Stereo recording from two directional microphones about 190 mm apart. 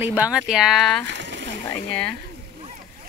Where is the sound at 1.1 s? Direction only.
70° right (ahead or behind).